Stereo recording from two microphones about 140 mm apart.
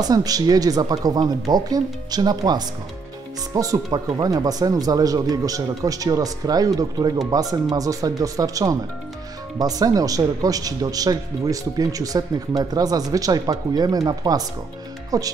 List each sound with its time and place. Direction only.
0.0 s speech: 25° right (ahead or behind)